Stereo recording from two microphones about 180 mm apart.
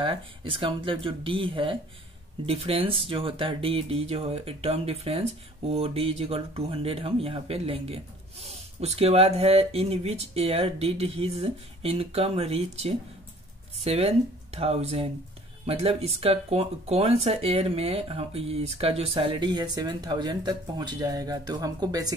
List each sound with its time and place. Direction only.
0.0 s speech: 30° right (ahead or behind)